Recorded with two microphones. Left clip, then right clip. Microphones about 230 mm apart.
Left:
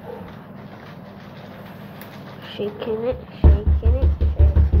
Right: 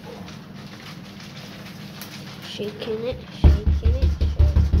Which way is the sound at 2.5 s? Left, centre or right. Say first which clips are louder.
Left 3 dB; centre.